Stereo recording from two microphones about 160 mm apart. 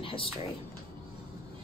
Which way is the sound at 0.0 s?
35° left (ahead or behind).